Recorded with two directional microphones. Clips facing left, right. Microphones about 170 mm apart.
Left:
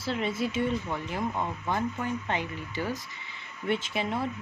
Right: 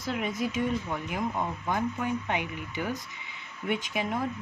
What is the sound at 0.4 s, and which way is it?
Speech, 10° right (ahead or behind).